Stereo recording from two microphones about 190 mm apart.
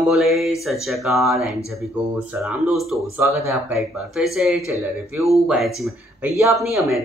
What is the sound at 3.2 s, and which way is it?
Speech, 15° right (ahead or behind).